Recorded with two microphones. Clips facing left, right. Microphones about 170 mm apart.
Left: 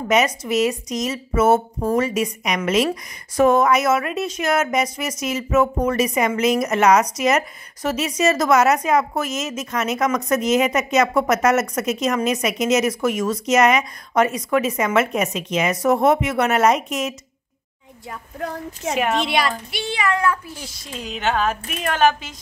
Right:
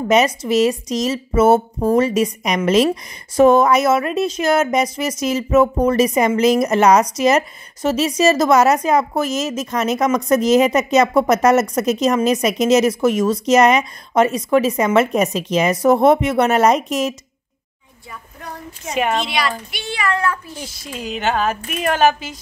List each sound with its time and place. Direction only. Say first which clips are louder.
0.1 s speech: right 3 dB; 30° right (ahead or behind)
19.2 s speech: left 1 dB; 50° left (ahead or behind)
19.7 s speech: even; 25° left (ahead or behind)
20.8 s a woman's voice: right 2 dB; 5° right (ahead or behind)